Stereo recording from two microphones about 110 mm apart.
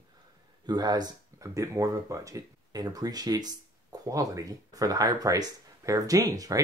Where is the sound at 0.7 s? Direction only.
40° right (ahead or behind).